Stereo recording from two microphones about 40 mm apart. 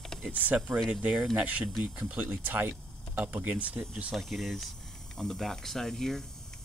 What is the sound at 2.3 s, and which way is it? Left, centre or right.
Speech, right.